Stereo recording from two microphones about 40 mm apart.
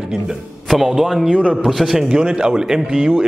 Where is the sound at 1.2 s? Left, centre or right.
Left.